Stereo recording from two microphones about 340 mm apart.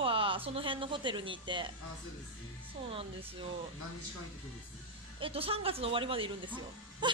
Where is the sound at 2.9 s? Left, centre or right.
Centre.